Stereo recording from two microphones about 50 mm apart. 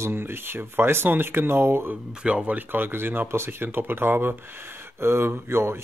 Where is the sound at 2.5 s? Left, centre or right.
Right.